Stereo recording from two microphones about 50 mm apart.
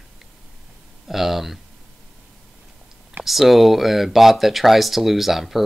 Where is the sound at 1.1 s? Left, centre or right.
Centre.